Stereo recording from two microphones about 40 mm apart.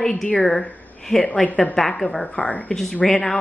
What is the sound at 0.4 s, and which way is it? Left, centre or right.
Speech, centre.